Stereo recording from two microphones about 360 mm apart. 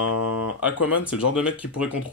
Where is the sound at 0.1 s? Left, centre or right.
Left.